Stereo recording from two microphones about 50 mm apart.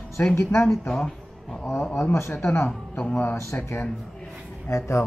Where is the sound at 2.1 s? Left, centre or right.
Left.